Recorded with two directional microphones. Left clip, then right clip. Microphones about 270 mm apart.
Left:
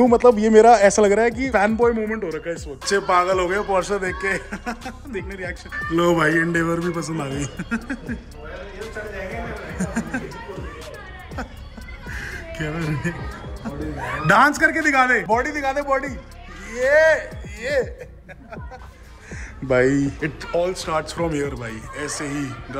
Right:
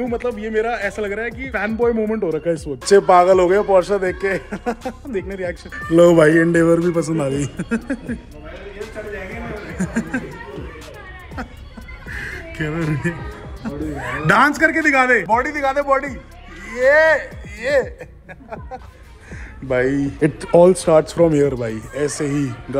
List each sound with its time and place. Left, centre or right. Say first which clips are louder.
0.0 s speech: left 9 dB; centre
2.0 s speech: right 6 dB; centre
2.8 s a man's voice: right 7 dB; centre
9.8 s a man's voice: right 3 dB; centre
12.1 s music: right 3 dB; centre
13.6 s a man's voice: right 3 dB; centre
19.7 s speech: even; centre
20.2 s a man's voice: right 10 dB; centre